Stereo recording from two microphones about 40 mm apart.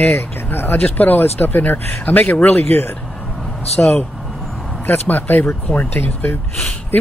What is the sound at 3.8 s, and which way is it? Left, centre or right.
Speech, left.